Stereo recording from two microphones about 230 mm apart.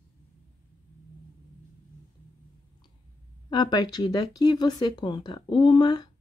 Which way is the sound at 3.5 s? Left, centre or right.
Centre.